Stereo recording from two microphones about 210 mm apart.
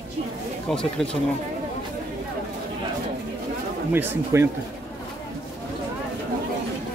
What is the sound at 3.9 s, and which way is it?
Speech, 10° right (ahead or behind).